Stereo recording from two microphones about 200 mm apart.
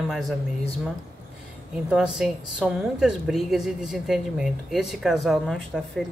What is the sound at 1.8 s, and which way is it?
Speech, centre (ahead or behind).